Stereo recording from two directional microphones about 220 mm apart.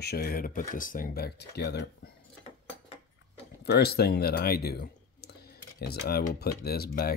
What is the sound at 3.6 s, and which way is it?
Speech, 45° left (ahead or behind).